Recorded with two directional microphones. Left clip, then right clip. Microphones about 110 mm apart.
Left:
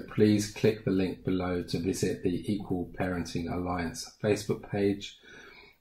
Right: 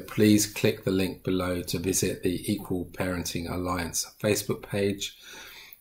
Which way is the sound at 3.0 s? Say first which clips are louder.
Right 3 dB; 20° right (ahead or behind).